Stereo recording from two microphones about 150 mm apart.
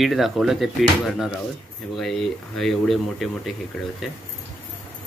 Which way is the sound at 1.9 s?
Centre (ahead or behind).